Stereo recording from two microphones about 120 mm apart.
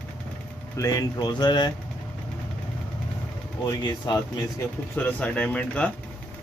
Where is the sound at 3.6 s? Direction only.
30° left (ahead or behind).